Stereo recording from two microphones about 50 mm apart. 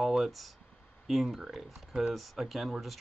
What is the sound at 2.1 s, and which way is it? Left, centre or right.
Speech, centre.